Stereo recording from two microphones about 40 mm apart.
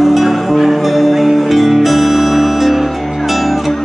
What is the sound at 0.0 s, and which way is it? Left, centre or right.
Music, centre.